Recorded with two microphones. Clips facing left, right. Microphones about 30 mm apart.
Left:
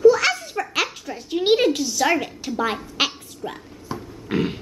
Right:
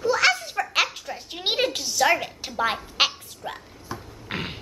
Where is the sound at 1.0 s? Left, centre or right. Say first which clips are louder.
Left 7 dB; centre.